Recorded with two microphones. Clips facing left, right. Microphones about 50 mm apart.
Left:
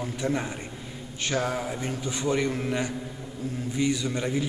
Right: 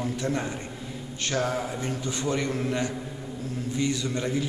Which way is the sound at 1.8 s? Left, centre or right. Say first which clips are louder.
Even; centre.